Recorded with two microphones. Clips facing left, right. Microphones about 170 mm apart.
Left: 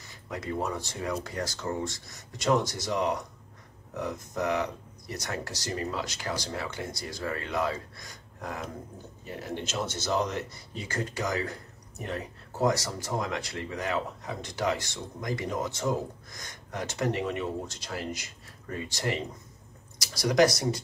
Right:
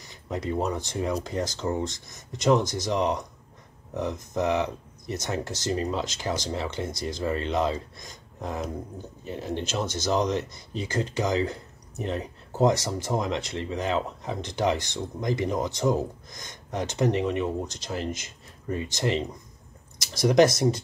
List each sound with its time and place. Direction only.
0.3 s speech: 20° right (ahead or behind)